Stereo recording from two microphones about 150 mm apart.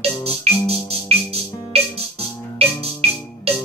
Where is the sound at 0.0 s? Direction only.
40° right (ahead or behind).